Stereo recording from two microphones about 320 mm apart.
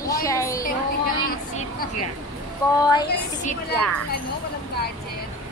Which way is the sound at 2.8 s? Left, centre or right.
Centre.